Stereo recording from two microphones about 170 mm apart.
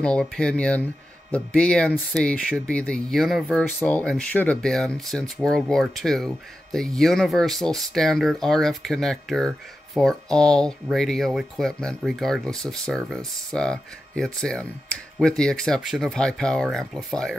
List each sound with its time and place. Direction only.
0.0 s speech: 5° left (ahead or behind)